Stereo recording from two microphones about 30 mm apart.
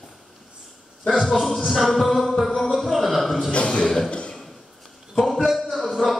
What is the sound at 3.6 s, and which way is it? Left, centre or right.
Speech, left.